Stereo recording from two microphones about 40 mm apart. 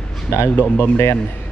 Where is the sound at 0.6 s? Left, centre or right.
Left.